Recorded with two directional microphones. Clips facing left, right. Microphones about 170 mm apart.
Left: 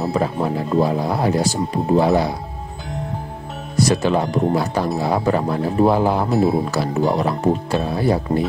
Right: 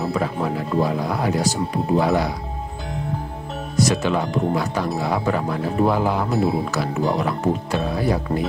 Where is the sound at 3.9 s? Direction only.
35° left (ahead or behind).